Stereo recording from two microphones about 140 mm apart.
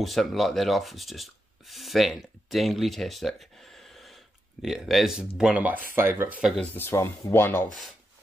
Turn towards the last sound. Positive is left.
turn(degrees=15)  # may be behind; listen again after turning